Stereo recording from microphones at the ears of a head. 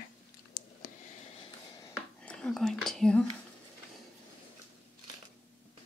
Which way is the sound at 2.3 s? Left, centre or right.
Centre.